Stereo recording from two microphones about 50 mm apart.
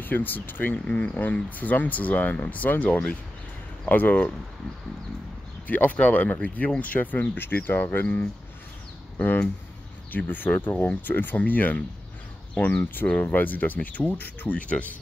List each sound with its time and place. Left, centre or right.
0.0 s speech: left
0.9 s speech: left
3.8 s speech: left
5.7 s speech: left
10.1 s speech: left
12.8 s speech: left